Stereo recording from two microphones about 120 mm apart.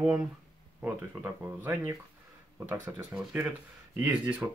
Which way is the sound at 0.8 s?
15° right (ahead or behind).